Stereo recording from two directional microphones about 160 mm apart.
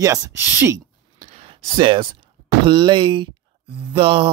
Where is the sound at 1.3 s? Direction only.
40° right (ahead or behind).